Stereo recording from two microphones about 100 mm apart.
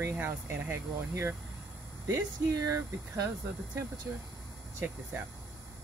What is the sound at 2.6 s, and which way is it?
Speech, 35° right (ahead or behind).